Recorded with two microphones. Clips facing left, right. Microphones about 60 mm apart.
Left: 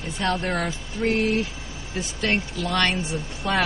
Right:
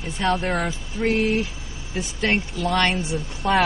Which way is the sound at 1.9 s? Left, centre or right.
Right.